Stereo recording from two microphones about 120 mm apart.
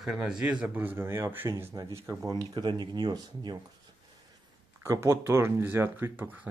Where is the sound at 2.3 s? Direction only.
30° right (ahead or behind).